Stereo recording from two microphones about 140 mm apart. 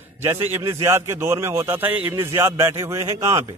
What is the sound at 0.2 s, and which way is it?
A man's voice, 15° right (ahead or behind).